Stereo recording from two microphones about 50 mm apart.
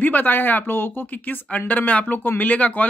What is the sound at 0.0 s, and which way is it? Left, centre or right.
Speech, left.